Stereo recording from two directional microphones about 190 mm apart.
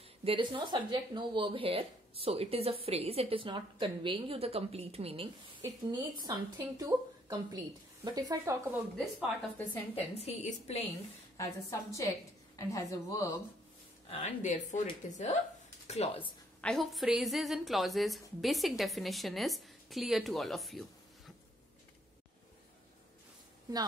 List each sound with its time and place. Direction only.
0.2 s speech: 30° right (ahead or behind)
9.9 s speech: 35° left (ahead or behind)
11.3 s a woman's voice: 15° left (ahead or behind)
14.1 s speech: 35° left (ahead or behind)
16.2 s a woman's voice: 5° left (ahead or behind)